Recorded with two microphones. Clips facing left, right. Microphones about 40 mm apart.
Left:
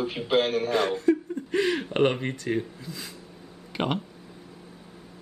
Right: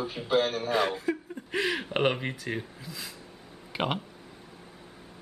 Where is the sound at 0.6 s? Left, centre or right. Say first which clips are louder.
Left 4 dB; centre.